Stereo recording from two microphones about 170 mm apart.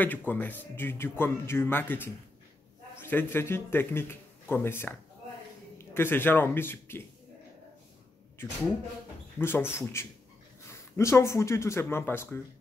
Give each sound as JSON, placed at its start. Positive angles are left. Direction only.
{"t": 0.0, "sound": "a man's voice", "side_deg": 10}
{"t": 8.4, "sound": "speech", "side_deg": 15}